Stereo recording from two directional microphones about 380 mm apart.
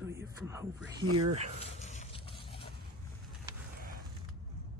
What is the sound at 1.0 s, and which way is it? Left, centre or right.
Speech, right.